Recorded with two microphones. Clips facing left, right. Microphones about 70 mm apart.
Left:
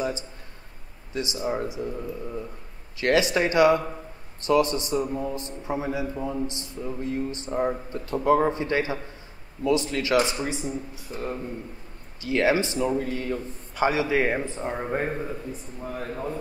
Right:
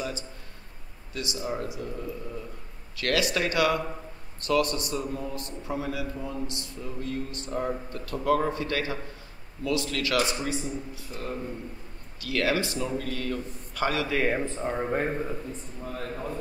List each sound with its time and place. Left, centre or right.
1.1 s a man's voice: left
3.0 s a man's voice: left
11.1 s a man's voice: left; by 16.3 s centre